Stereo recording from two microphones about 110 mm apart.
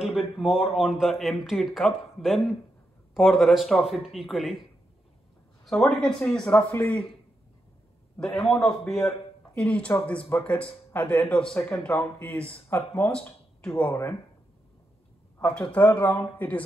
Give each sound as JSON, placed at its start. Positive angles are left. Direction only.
{"t": 0.5, "sound": "a man's voice", "side_deg": -5}
{"t": 5.7, "sound": "a man's voice", "side_deg": 5}
{"t": 8.2, "sound": "a man's voice", "side_deg": 5}
{"t": 13.1, "sound": "a sound", "side_deg": 5}
{"t": 13.7, "sound": "speech", "side_deg": 20}
{"t": 15.4, "sound": "speech", "side_deg": 10}